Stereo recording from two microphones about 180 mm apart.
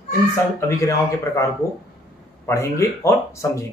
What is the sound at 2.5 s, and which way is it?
Speech, 15° left (ahead or behind).